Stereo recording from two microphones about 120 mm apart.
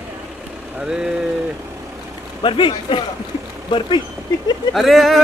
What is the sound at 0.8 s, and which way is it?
Speech, 5° right (ahead or behind).